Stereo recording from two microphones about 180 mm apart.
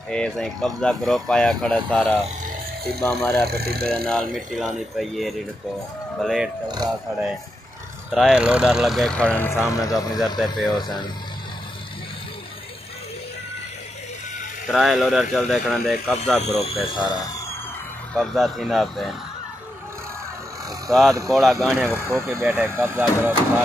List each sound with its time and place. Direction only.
0.1 s speech: 5° left (ahead or behind)
3.4 s speech: 60° right (ahead or behind)
3.8 s speech: 5° left (ahead or behind)
8.1 s speech: centre (ahead or behind); by 11.0 s 25° left (ahead or behind)
14.7 s speech: centre (ahead or behind)
16.4 s speech: 35° left (ahead or behind)
18.1 s speech: centre (ahead or behind)
20.9 s speech: centre (ahead or behind)
22.1 s speech: 15° right (ahead or behind)